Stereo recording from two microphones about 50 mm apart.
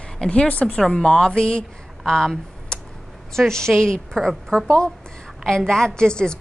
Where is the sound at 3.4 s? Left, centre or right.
Centre.